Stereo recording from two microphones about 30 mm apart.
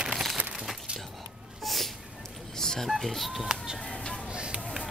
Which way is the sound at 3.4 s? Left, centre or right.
Right.